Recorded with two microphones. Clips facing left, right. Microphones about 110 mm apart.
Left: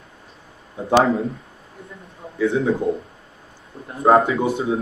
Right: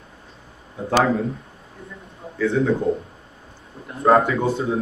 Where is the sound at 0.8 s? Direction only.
20° left (ahead or behind).